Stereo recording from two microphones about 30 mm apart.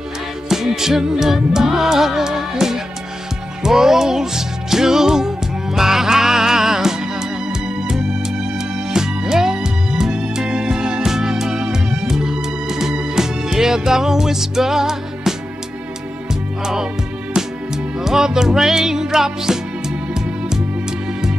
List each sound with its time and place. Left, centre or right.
0.5 s music: centre
16.6 s music: right